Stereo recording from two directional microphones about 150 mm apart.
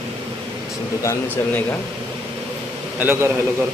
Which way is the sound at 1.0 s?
20° left (ahead or behind).